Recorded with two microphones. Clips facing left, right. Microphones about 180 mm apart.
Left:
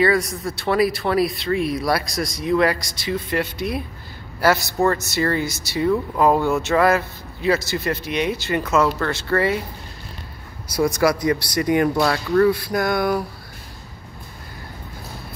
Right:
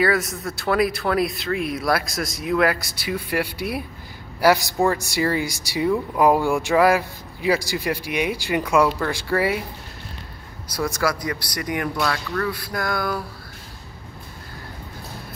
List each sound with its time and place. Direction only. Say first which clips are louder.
0.0 s speech: left 2 dB; centre (ahead or behind)
10.7 s speech: left 5 dB; 15° left (ahead or behind)